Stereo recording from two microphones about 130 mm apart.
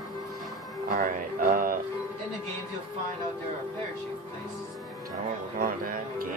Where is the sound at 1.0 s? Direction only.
90° right.